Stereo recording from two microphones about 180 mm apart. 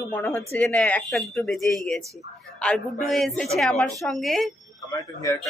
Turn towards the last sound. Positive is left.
turn(degrees=20)  # may be behind; listen again after turning